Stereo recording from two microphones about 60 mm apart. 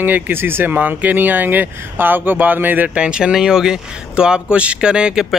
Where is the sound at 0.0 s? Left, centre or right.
Right.